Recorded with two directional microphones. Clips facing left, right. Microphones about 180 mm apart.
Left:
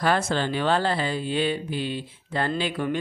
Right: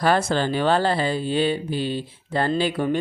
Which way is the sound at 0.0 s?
35° right (ahead or behind).